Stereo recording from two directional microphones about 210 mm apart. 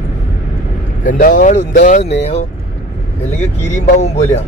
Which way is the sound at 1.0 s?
40° left (ahead or behind).